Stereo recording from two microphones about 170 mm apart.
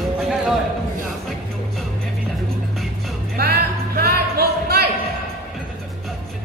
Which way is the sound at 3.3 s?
65° right (ahead or behind).